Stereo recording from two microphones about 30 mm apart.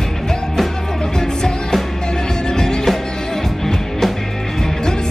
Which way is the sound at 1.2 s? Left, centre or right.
Centre.